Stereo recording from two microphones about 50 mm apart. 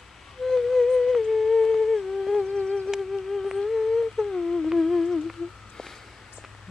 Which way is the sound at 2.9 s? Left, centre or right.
Centre.